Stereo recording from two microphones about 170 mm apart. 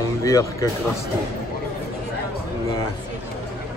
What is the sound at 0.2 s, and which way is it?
Speech, 20° left (ahead or behind).